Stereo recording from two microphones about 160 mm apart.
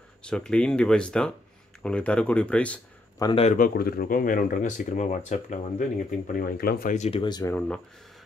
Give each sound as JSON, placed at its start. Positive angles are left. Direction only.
{"t": 0.2, "sound": "speech", "side_deg": 5}
{"t": 3.2, "sound": "speech", "side_deg": 30}
{"t": 3.4, "sound": "speech", "side_deg": 60}
{"t": 7.0, "sound": "speech", "side_deg": 40}
{"t": 7.2, "sound": "speech", "side_deg": 25}
{"t": 7.5, "sound": "speech", "side_deg": 5}